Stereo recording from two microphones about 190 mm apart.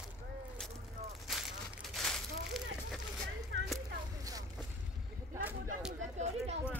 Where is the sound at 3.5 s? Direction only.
80° right.